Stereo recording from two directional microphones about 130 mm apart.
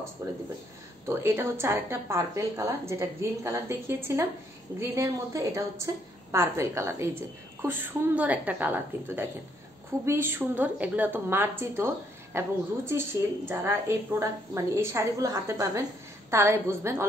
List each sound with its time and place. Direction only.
0.2 s a woman's voice: 25° right (ahead or behind)